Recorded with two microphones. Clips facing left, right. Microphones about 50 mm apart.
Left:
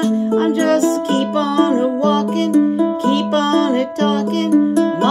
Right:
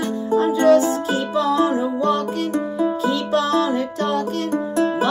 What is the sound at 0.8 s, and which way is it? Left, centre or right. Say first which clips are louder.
Music: left 4 dB; left.